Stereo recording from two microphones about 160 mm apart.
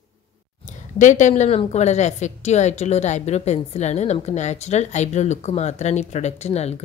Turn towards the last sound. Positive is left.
turn(degrees=40)  # may be behind; listen again after turning